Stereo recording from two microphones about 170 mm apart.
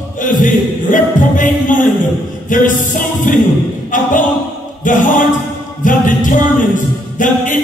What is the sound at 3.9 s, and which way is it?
Speech, 50° left (ahead or behind).